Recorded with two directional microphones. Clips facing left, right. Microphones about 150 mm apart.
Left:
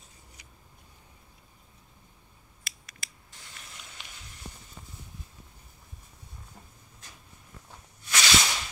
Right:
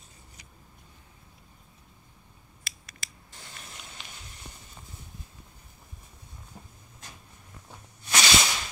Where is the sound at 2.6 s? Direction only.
30° right (ahead or behind).